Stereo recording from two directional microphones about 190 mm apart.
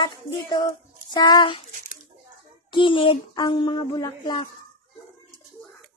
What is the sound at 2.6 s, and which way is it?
Speech, 25° left (ahead or behind).